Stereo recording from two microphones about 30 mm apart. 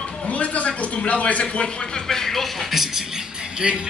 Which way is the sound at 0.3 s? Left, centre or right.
Left.